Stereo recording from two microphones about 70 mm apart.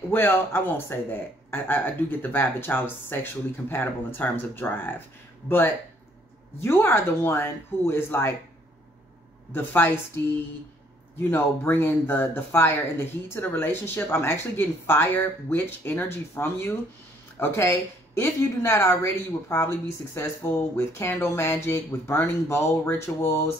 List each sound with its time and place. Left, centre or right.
0.1 s speech: left
6.6 s speech: left
9.5 s speech: left